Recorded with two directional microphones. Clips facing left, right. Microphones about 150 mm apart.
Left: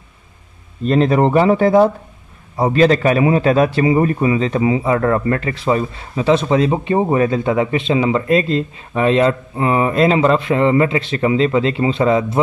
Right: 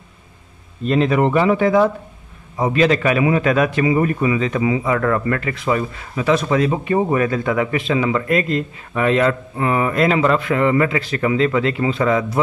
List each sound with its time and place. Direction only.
0.8 s a man's voice: 40° left (ahead or behind)